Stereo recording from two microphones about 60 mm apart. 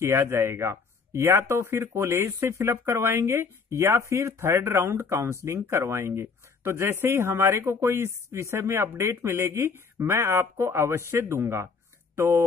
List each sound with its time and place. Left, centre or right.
0.0 s speech: right